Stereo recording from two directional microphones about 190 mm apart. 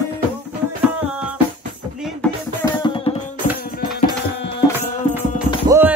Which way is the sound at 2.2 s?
5° left (ahead or behind).